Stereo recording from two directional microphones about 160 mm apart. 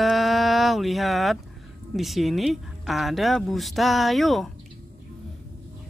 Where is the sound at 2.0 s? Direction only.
Centre (ahead or behind).